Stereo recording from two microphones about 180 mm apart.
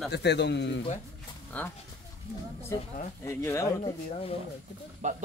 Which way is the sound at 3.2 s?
15° left (ahead or behind).